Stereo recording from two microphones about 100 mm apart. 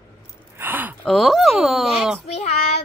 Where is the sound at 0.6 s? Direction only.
20° right (ahead or behind).